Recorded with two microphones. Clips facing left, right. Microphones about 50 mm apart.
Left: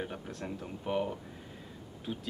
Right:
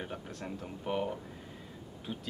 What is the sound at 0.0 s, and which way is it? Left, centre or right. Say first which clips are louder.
Speech: left 2 dB; centre.